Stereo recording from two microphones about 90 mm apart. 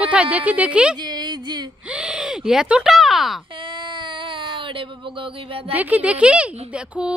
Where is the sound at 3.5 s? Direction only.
65° right (ahead or behind); by 5.7 s 85° right.